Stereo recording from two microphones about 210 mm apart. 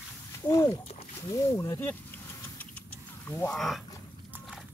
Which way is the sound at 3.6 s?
Centre (ahead or behind).